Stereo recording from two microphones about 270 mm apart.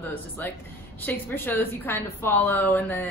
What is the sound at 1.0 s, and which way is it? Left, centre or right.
A woman's voice, centre.